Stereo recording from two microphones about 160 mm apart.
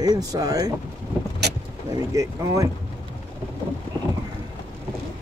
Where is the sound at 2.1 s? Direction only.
20° right (ahead or behind).